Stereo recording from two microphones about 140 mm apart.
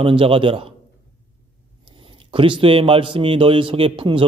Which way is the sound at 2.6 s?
40° right (ahead or behind).